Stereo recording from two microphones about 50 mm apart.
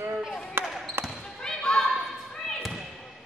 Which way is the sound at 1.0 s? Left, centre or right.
Right.